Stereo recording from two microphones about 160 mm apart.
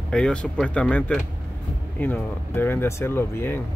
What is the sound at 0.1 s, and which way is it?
Speech, 5° left (ahead or behind).